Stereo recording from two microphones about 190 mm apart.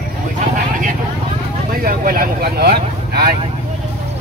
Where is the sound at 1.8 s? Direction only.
50° right (ahead or behind).